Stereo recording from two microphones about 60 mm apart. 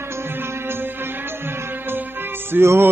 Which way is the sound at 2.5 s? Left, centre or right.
Right.